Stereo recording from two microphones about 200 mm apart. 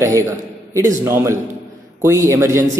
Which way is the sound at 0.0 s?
15° right (ahead or behind).